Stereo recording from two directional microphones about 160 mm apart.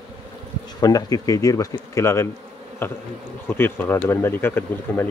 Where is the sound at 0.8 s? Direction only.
20° left (ahead or behind).